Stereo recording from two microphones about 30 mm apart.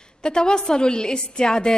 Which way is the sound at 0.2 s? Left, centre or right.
Left.